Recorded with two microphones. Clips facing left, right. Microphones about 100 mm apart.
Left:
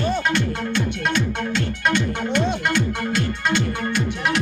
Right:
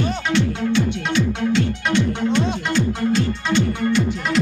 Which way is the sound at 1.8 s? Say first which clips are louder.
Right 2 dB; 55° left (ahead or behind).